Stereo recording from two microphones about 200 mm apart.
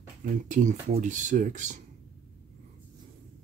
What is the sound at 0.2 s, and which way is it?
Speech, 40° right (ahead or behind).